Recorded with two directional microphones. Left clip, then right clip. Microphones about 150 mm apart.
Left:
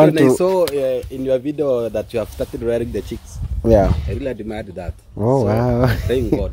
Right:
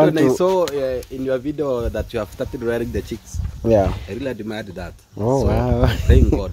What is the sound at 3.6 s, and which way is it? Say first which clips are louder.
Speech: left 2 dB; 30° left (ahead or behind).